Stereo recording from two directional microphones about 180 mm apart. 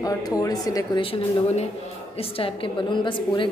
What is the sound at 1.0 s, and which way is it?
A woman's voice, 35° left (ahead or behind).